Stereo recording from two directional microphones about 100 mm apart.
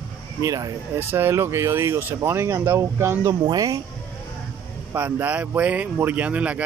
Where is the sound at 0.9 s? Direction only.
25° right (ahead or behind).